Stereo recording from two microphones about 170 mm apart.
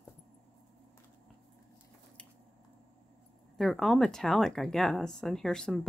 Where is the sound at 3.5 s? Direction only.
Centre (ahead or behind).